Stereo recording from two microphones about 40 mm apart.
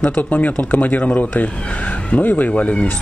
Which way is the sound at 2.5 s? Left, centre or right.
Left.